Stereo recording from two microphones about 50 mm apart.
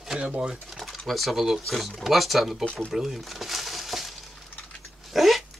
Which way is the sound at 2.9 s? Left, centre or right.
Centre.